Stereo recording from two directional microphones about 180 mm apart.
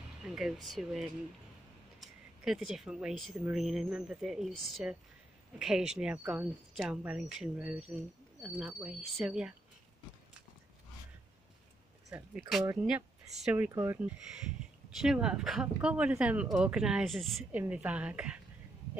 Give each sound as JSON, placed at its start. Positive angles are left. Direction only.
{"t": 0.2, "sound": "speech", "side_deg": -5}
{"t": 12.4, "sound": "speech", "side_deg": 0}
{"t": 15.0, "sound": "speech", "side_deg": -5}